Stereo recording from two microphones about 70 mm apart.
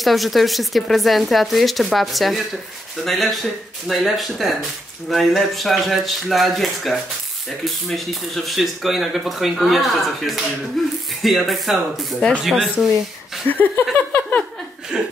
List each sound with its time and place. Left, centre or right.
0.0 s speech: centre
13.5 s a sound: left
14.9 s speech: centre